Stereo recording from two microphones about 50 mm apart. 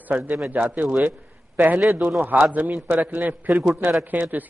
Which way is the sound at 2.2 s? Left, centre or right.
Right.